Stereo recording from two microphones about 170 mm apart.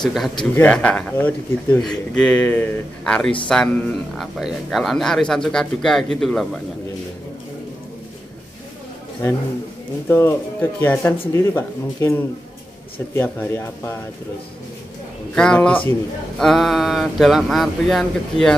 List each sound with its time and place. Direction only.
0.0 s speech: centre (ahead or behind)
9.2 s speech: 15° left (ahead or behind)
15.3 s speech: 5° left (ahead or behind)